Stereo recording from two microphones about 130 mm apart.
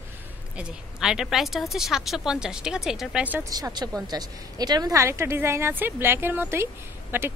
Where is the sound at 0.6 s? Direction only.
5° right (ahead or behind).